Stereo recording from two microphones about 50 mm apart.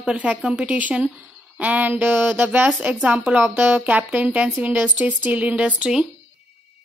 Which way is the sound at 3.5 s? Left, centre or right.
Right.